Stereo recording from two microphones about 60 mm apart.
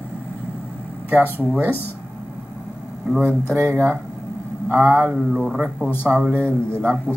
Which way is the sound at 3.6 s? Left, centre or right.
Right.